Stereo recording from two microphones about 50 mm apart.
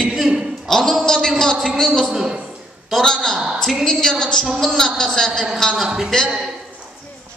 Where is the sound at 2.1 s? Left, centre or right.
Centre.